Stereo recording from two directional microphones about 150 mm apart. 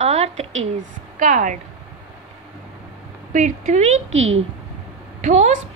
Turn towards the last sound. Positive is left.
turn(degrees=-55)  # may be behind; listen again after turning